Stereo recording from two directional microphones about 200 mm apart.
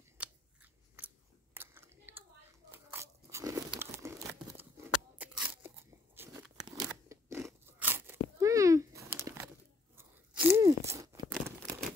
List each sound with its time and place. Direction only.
0.2 s scissors: 10° right (ahead or behind)
2.7 s crunch: 10° right (ahead or behind)
8.4 s a sound: 15° right (ahead or behind)
9.9 s crunch: 10° right (ahead or behind)